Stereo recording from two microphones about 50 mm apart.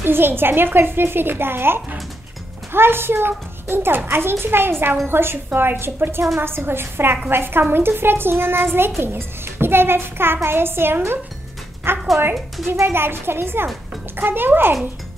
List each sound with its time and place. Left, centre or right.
0.0 s a child's voice: right